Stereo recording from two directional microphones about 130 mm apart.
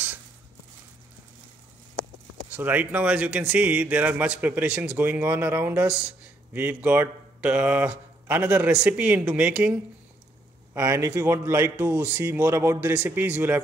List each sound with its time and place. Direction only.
2.5 s speech: 15° right (ahead or behind)
9.2 s a man's voice: 20° right (ahead or behind)
9.5 s speech: 5° right (ahead or behind)
10.7 s a man's voice: 25° right (ahead or behind)